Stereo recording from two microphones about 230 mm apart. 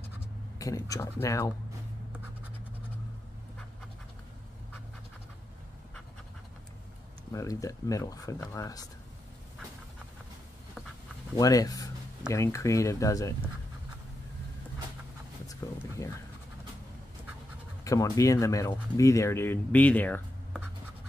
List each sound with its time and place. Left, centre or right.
0.2 s speech: centre
7.3 s speech: centre
11.3 s speech: centre
15.6 s speech: centre
17.8 s speech: centre